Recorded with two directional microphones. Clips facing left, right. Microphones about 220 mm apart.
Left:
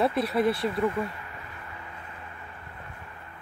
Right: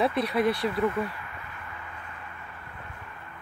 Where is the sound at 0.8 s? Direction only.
25° left (ahead or behind).